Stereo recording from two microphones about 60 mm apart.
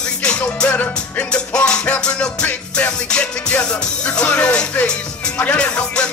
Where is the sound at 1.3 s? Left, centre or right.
Centre.